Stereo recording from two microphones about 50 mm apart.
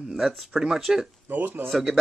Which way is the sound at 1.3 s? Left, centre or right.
Right.